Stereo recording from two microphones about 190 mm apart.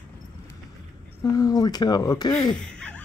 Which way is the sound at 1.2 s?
20° left (ahead or behind).